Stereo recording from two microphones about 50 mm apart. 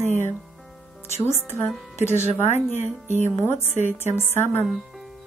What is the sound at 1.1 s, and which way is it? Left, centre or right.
Speech, left.